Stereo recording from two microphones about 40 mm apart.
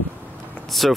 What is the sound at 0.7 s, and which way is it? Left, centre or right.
Speech, centre.